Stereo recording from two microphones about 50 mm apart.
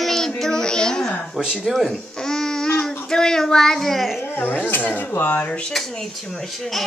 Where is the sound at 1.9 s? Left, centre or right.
Centre.